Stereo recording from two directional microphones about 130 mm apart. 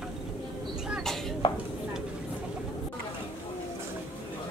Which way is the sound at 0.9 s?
Centre (ahead or behind).